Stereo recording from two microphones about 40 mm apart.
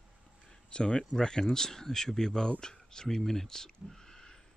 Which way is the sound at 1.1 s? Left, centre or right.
Centre.